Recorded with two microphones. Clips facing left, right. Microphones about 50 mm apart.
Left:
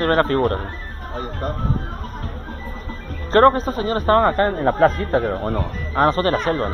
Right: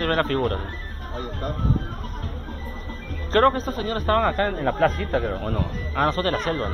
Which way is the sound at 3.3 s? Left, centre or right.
Left.